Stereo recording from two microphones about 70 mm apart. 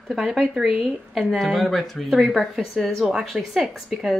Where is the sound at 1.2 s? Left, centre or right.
Centre.